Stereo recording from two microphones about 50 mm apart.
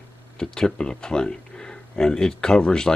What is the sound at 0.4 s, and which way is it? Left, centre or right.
Speech, centre.